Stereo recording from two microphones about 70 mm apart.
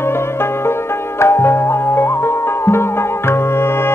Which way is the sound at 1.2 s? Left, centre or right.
Left.